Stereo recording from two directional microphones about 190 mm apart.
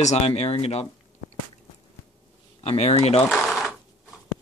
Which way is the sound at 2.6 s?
35° left (ahead or behind).